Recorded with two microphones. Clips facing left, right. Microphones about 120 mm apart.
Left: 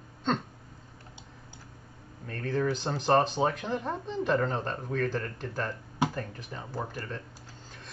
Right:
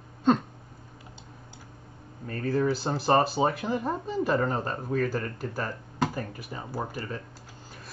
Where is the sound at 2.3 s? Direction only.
5° right (ahead or behind).